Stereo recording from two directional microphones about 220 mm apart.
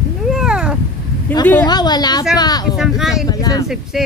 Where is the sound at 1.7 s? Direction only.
20° left (ahead or behind).